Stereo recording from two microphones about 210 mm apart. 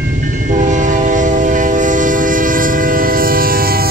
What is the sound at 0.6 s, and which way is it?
Train, 40° right (ahead or behind).